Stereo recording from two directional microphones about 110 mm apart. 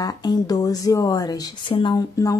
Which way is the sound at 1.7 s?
45° left (ahead or behind).